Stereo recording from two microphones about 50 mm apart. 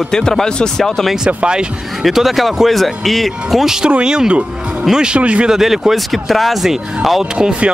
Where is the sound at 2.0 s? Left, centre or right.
Centre.